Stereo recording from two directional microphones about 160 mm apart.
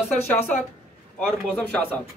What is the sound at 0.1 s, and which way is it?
Speech, 10° left (ahead or behind).